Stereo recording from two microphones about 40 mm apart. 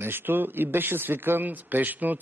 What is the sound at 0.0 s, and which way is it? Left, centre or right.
A man's voice, right.